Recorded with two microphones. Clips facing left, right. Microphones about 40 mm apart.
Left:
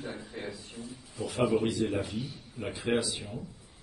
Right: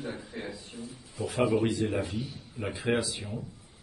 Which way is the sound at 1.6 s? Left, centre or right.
Right.